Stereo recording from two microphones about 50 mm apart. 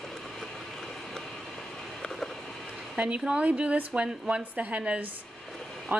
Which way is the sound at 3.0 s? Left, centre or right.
Right.